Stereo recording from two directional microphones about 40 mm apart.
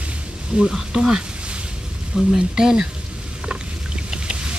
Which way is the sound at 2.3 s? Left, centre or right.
Centre.